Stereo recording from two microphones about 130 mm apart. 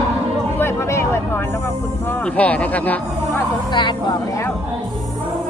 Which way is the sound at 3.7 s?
35° left (ahead or behind).